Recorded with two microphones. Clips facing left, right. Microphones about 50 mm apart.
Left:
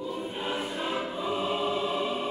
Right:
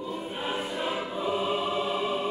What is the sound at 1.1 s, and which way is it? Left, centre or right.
Music, right.